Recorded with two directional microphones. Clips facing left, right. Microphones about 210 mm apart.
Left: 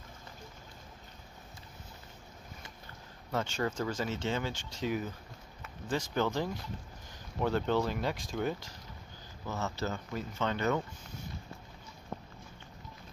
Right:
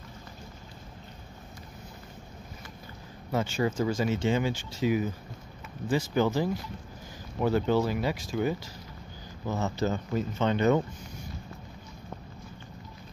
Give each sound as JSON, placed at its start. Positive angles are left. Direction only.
{"t": 3.3, "sound": "speech", "side_deg": -10}
{"t": 9.5, "sound": "speech", "side_deg": -15}